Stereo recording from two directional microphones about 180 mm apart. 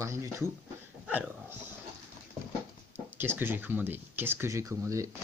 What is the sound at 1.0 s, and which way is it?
Dog, 10° right (ahead or behind).